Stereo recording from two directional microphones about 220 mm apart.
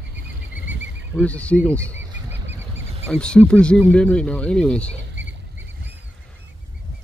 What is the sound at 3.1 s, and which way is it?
Speech, 5° left (ahead or behind).